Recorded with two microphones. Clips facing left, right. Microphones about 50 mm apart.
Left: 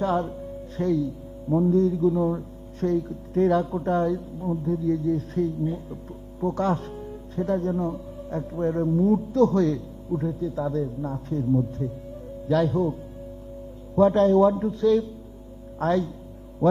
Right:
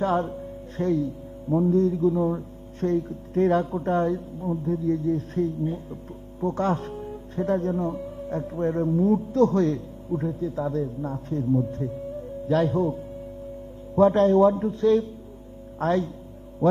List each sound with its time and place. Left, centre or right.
0.0 s speech: right